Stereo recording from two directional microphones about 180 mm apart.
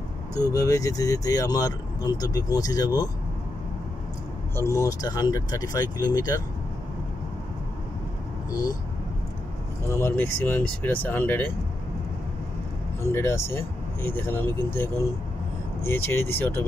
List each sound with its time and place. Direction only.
0.4 s speech: 20° left (ahead or behind)
4.6 s speech: 15° left (ahead or behind)
8.5 s speech: 20° left (ahead or behind)
9.8 s speech: 15° left (ahead or behind)
13.1 s speech: 15° left (ahead or behind)